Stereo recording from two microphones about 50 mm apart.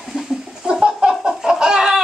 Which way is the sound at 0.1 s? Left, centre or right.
Right.